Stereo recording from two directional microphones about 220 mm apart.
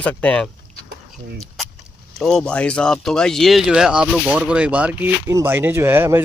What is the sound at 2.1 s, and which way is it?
Speech, centre (ahead or behind).